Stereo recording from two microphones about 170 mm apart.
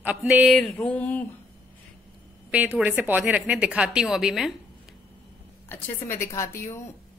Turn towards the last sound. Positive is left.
turn(degrees=15)  # may be behind; listen again after turning